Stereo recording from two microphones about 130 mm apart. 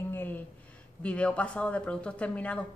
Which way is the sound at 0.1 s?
15° left (ahead or behind).